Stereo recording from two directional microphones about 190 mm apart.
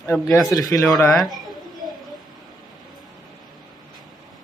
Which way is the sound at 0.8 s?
Centre (ahead or behind).